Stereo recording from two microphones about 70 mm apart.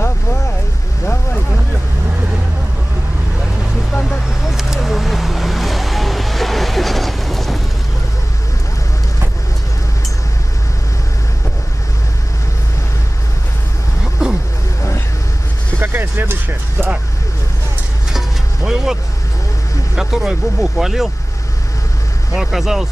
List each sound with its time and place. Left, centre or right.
3.9 s vehicle: centre
4.3 s a sound: centre
14.2 s vehicle: centre
15.8 s vehicle: right
18.1 s vehicle: centre
20.0 s vehicle: centre
22.3 s vehicle: centre